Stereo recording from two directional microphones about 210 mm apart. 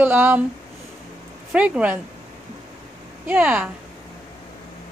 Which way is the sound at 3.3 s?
5° right (ahead or behind).